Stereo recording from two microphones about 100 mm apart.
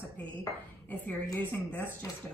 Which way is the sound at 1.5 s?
15° left (ahead or behind).